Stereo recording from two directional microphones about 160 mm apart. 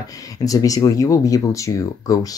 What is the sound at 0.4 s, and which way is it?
Speech, 20° left (ahead or behind).